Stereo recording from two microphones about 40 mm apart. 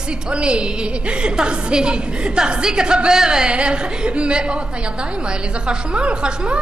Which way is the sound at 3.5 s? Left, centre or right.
Right.